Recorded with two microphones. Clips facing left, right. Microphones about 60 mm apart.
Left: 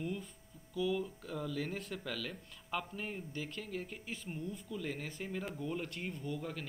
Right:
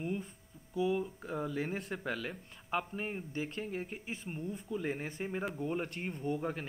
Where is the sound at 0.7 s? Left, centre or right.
Right.